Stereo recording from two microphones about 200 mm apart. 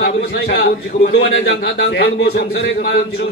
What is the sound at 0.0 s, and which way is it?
A man's voice, 55° left (ahead or behind).